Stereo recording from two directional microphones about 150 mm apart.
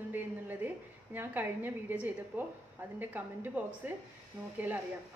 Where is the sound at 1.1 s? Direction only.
10° right (ahead or behind).